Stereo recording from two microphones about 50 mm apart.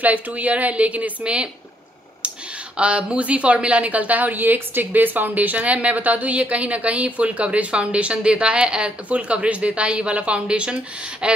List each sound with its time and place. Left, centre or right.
0.0 s a woman's voice: right
2.8 s a woman's voice: right